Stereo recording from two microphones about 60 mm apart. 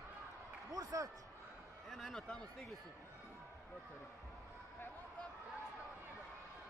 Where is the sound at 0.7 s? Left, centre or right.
Right.